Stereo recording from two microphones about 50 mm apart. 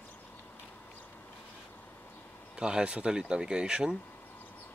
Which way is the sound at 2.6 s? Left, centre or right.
Centre.